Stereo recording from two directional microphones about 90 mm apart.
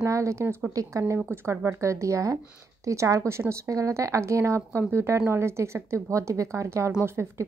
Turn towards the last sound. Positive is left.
turn(degrees=-30)  # may be behind; listen again after turning